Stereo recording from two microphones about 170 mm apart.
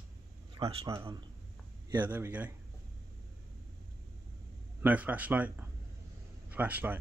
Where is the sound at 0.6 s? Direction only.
20° right (ahead or behind).